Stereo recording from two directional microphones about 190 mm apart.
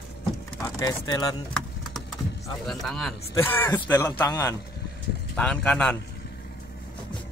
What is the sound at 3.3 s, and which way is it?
Speech, 10° left (ahead or behind).